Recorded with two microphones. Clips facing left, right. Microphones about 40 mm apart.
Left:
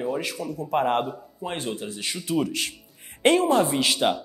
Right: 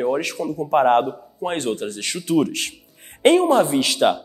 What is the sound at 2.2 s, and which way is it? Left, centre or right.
A woman's voice, right.